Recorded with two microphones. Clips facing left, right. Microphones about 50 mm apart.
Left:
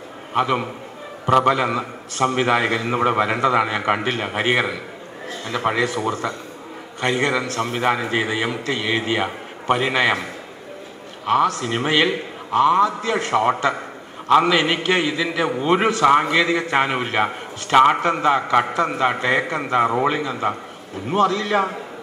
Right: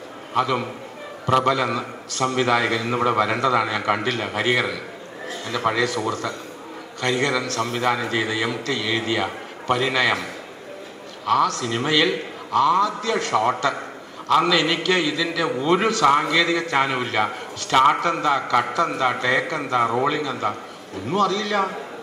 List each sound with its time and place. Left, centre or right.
0.3 s a man's voice: left
11.2 s a man's voice: left
17.7 s a man's voice: centre
18.0 s a man's voice: left